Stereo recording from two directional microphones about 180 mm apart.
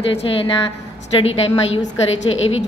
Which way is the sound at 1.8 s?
85° left.